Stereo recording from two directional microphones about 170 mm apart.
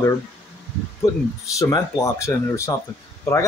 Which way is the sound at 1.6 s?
20° left (ahead or behind).